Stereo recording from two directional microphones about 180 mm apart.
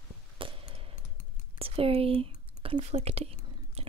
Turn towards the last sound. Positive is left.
turn(degrees=-35)  # may be behind; listen again after turning